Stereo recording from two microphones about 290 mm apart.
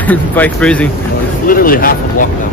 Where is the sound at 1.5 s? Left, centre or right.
Left.